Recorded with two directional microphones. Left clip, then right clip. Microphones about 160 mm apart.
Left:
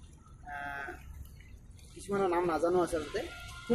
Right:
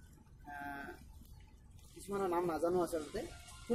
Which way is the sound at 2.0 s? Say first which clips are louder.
Left 6 dB; 15° right (ahead or behind).